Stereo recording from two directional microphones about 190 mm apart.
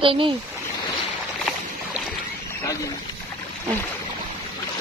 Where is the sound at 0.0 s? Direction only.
25° right (ahead or behind).